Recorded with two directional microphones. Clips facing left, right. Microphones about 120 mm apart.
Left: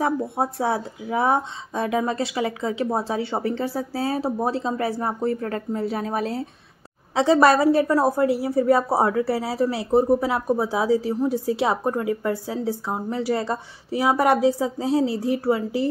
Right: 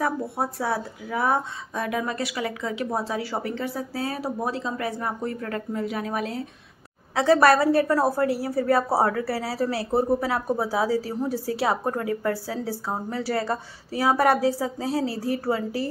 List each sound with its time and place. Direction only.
0.0 s a woman's voice: 25° left (ahead or behind)